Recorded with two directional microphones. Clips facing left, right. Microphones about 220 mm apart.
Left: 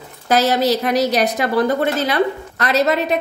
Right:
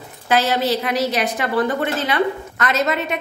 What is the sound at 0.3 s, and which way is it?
A woman's voice, 40° left (ahead or behind).